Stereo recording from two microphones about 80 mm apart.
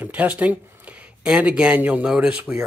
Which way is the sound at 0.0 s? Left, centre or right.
Centre.